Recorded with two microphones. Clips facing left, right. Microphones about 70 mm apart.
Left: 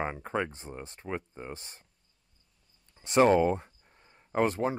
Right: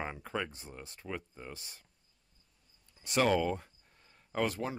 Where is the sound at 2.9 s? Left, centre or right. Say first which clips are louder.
Left 7 dB; left.